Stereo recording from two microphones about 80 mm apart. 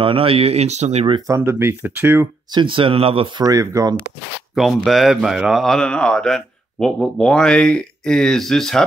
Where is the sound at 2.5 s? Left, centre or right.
Right.